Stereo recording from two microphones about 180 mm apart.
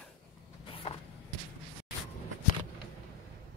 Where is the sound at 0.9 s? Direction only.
35° left (ahead or behind).